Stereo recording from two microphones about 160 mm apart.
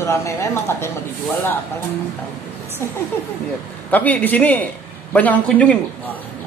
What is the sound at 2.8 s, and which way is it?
A man's voice, 15° left (ahead or behind).